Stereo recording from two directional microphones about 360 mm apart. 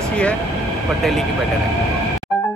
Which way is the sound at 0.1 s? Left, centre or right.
Centre.